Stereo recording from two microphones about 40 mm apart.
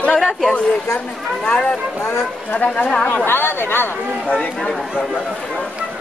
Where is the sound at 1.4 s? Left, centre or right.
Left.